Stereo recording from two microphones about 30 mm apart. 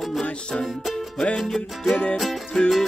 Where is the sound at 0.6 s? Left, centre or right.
Centre.